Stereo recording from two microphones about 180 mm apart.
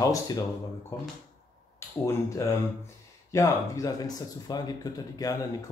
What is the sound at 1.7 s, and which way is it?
Speech, 15° left (ahead or behind).